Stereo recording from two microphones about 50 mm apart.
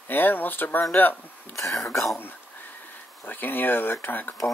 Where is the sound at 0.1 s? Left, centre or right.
Left.